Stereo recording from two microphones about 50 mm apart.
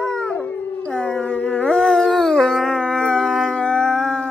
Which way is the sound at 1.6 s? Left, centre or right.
Centre.